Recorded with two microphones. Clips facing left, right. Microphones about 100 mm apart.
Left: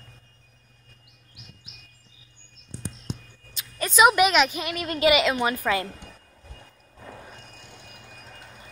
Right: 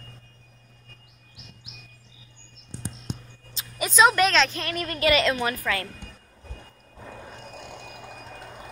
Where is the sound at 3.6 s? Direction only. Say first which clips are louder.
Right 1 dB; 30° right (ahead or behind).